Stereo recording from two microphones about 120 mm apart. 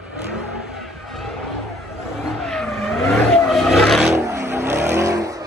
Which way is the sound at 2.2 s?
5° left (ahead or behind).